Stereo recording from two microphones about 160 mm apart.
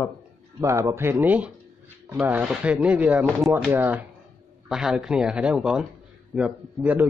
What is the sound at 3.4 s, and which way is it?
Speech, centre (ahead or behind).